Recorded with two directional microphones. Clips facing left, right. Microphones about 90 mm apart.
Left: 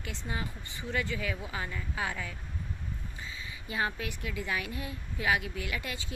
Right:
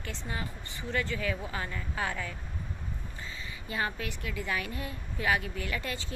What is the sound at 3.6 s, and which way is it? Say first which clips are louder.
Speech: even; 20° left (ahead or behind).